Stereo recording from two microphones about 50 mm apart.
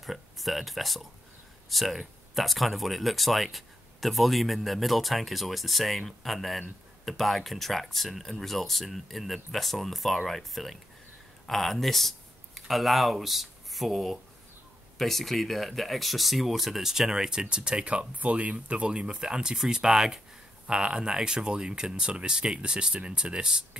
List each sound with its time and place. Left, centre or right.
0.0 s speech: centre